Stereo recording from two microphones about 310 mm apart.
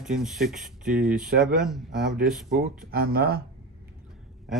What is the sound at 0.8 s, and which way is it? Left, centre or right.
Speech, right.